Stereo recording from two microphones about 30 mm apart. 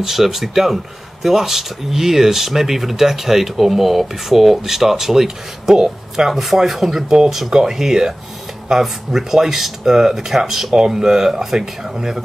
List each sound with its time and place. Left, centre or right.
0.0 s speech: centre